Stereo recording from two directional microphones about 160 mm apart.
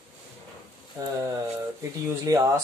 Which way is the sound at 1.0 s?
15° right (ahead or behind).